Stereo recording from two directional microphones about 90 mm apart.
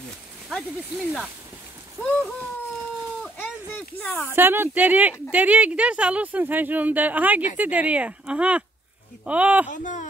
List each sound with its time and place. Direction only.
0.5 s speech: centre (ahead or behind)
2.0 s speech: 30° right (ahead or behind)
4.3 s speech: 25° right (ahead or behind)